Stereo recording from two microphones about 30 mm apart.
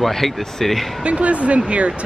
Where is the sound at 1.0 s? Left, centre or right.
Right.